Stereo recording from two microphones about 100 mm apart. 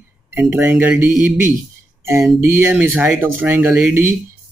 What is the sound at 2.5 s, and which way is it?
Speech, 20° right (ahead or behind).